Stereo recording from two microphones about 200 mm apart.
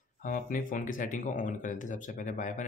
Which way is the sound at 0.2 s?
45° left (ahead or behind).